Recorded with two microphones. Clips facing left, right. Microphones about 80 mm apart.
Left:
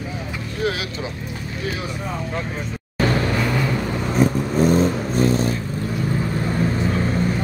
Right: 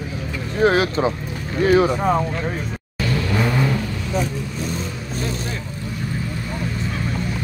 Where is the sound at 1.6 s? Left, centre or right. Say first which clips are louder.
Right 14 dB; right.